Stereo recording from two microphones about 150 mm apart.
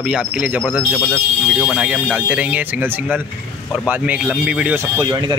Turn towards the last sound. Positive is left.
turn(degrees=-30)  # may be behind; listen again after turning